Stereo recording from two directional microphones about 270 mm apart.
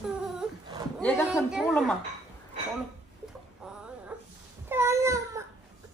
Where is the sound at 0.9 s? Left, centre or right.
Centre.